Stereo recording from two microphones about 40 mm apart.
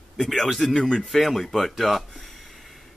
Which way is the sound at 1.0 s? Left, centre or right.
Centre.